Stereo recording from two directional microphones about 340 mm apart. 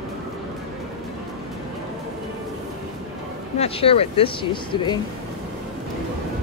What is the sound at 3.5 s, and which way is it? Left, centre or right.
Speech, centre.